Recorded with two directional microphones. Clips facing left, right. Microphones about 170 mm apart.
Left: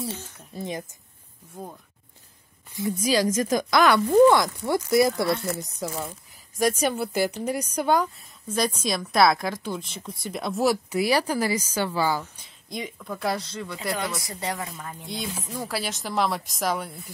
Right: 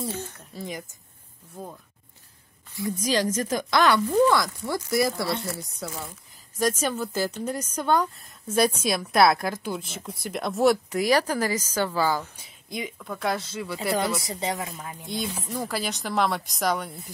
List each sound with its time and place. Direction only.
0.6 s speech: 25° left (ahead or behind)
2.9 s speech: 10° left (ahead or behind)
8.5 s a woman's voice: 5° right (ahead or behind); by 12.2 s 10° left (ahead or behind)
12.2 s a woman's voice: 5° right (ahead or behind)
14.2 s speech: 20° right (ahead or behind)
14.8 s a woman's voice: 5° right (ahead or behind)